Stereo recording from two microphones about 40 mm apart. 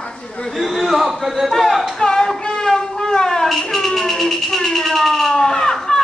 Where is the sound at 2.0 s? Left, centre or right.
Centre.